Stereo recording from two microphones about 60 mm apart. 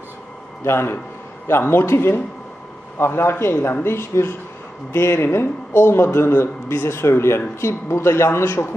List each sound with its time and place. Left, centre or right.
0.7 s a man's voice: left